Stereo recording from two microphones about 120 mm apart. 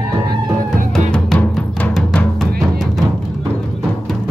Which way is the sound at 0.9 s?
10° left (ahead or behind).